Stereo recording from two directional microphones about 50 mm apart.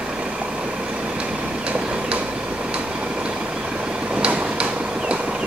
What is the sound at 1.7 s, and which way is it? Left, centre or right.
Tick-tock, right.